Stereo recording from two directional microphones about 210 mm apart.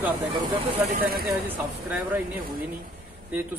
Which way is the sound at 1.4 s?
10° right (ahead or behind).